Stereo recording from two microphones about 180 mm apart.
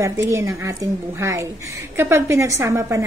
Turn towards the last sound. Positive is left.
turn(degrees=-15)  # may be behind; listen again after turning